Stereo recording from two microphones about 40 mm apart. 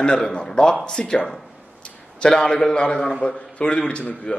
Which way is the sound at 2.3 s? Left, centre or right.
Centre.